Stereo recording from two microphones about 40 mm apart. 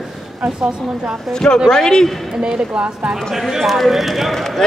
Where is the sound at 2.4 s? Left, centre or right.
Right.